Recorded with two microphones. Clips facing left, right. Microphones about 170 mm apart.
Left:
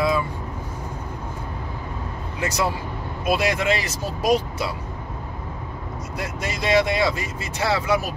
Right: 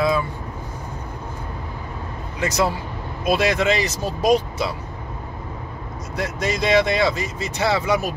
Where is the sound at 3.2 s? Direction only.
10° left (ahead or behind).